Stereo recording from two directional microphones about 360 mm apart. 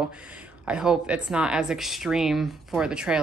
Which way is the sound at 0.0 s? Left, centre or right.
Centre.